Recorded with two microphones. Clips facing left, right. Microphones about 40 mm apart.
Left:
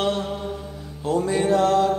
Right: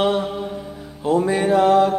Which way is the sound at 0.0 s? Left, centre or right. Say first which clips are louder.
Right 4 dB; centre.